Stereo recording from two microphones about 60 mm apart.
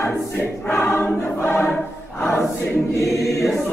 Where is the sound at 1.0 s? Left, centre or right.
Left.